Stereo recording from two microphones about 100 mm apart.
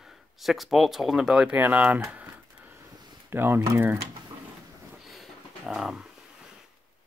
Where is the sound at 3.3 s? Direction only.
20° right (ahead or behind).